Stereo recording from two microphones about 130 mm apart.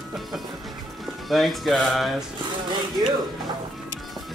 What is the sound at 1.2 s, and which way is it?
Speech, centre (ahead or behind).